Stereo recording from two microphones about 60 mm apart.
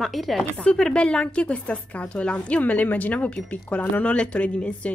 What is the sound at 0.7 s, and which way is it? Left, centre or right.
A woman's voice, centre.